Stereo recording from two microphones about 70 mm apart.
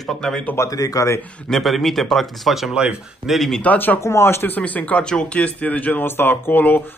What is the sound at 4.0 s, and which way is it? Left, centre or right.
Speech, left.